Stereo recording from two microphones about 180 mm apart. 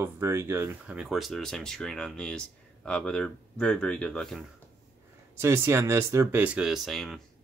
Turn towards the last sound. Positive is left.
turn(degrees=0)  # may be behind; listen again after turning